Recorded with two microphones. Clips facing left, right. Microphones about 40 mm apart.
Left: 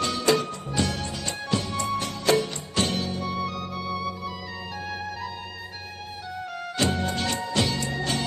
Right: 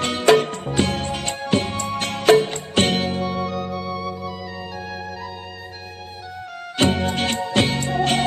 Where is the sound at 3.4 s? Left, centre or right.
Centre.